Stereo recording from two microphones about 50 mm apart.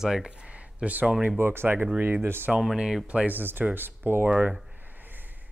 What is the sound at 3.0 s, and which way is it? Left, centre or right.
Speech, right.